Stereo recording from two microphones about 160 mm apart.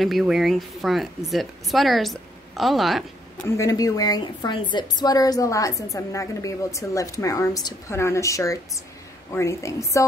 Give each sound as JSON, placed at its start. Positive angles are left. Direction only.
{"t": 0.0, "sound": "speech", "side_deg": 0}
{"t": 3.4, "sound": "a woman's voice", "side_deg": 20}